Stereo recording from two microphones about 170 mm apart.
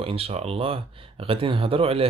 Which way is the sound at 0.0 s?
35° right (ahead or behind).